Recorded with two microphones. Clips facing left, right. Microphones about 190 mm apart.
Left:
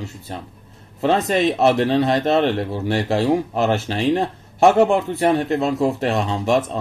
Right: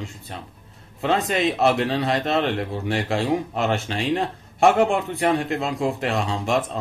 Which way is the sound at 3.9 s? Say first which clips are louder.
Left 4 dB; 35° left (ahead or behind).